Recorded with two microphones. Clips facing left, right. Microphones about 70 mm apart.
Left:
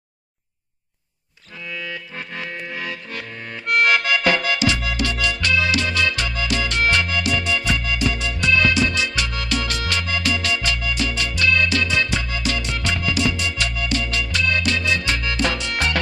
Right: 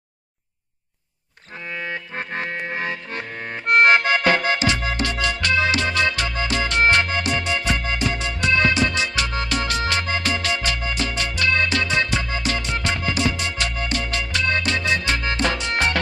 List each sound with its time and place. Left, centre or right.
1.7 s music: right